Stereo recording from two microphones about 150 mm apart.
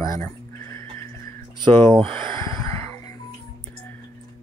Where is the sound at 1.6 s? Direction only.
35° right (ahead or behind).